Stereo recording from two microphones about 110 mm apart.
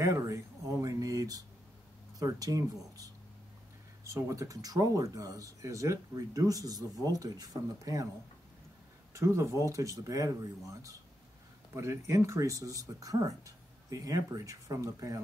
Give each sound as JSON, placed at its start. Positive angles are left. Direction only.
{"t": 0.0, "sound": "speech", "side_deg": -30}
{"t": 9.1, "sound": "speech", "side_deg": -25}